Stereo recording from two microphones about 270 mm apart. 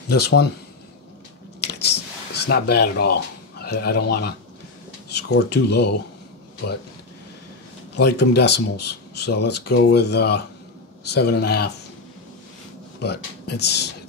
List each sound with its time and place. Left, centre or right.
0.1 s speech: left
1.7 s a sound: left
5.1 s speech: left
8.0 s speech: left
13.0 s speech: left